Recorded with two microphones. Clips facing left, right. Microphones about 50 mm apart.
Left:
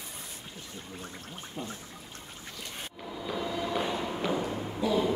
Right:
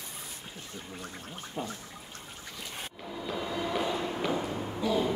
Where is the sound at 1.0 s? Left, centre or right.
Right.